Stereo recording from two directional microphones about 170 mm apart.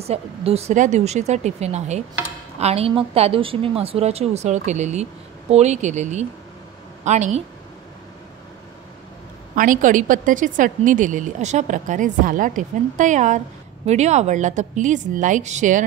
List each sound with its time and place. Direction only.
0.0 s a woman's voice: 35° right (ahead or behind)
9.6 s a woman's voice: 50° right (ahead or behind)